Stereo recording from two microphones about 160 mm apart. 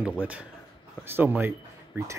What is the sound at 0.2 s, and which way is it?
Speech, 10° right (ahead or behind).